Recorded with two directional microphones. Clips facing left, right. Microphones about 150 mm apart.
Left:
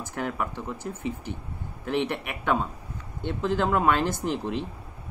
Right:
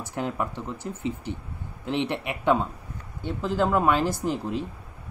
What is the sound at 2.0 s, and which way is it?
A man's voice, 15° right (ahead or behind).